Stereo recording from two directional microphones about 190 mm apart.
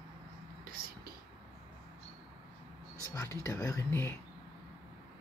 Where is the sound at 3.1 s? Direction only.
15° left (ahead or behind).